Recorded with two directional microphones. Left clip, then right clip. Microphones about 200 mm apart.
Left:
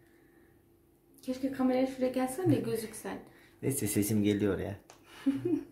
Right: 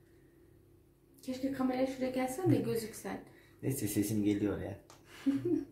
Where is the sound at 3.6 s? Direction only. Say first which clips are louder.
Left 3 dB; 35° left (ahead or behind).